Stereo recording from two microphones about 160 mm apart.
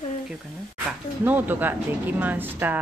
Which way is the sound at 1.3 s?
10° right (ahead or behind).